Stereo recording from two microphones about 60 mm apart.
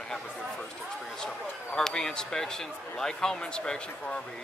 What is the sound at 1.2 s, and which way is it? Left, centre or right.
Speech, centre.